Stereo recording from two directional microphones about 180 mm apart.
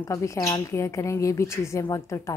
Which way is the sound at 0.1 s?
15° left (ahead or behind).